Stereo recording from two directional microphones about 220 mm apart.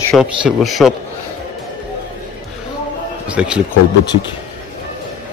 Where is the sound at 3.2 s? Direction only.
5° right (ahead or behind).